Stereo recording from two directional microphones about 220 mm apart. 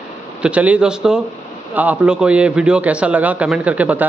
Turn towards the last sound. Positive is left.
turn(degrees=-5)  # may be behind; listen again after turning